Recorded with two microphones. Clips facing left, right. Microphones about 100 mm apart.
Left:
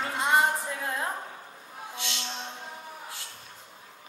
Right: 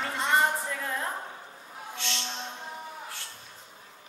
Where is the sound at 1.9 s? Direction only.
15° left (ahead or behind).